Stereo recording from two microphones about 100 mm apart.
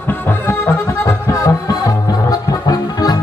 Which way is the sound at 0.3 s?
20° left (ahead or behind).